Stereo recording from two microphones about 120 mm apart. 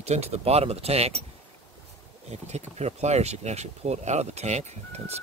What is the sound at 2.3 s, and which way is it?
Speech, 65° right (ahead or behind).